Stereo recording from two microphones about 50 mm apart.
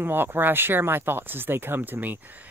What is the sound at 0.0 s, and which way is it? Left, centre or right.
Speech, right.